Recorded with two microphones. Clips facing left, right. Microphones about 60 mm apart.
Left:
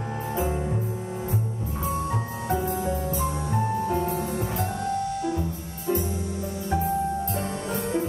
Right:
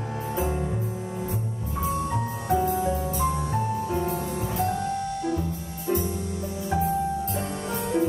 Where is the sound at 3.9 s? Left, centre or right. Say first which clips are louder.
Left 1 dB; centre.